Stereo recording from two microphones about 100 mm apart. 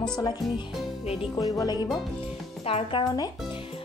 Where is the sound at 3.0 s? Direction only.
40° left (ahead or behind).